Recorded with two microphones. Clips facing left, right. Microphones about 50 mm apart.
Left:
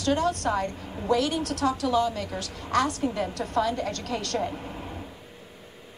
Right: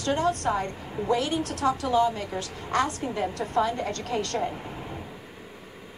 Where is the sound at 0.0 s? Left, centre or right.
Right.